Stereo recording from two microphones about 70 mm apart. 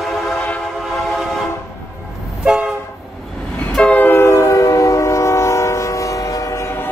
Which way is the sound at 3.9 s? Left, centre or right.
Left.